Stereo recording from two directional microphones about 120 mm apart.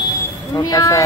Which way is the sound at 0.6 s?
30° left (ahead or behind).